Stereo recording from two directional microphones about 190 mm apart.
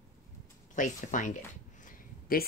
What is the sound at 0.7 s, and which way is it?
Speech, 40° left (ahead or behind).